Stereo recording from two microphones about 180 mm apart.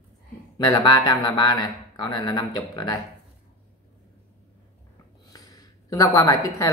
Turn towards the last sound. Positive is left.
turn(degrees=20)  # may be behind; listen again after turning